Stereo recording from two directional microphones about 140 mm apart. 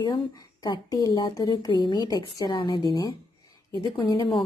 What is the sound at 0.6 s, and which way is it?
A woman's voice, 25° left (ahead or behind).